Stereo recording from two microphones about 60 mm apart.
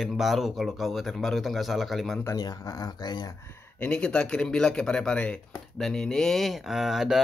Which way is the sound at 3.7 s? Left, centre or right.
Centre.